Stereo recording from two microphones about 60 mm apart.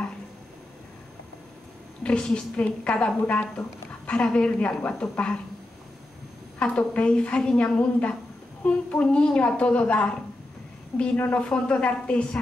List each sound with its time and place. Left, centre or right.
2.0 s a woman's voice: centre
6.6 s a woman's voice: centre
11.1 s speech: left
11.4 s a woman's voice: centre